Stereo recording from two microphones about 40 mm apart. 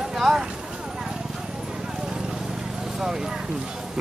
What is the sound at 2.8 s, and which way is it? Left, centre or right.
Clip-clop, centre.